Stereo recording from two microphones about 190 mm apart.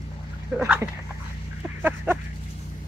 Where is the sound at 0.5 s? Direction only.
5° right (ahead or behind).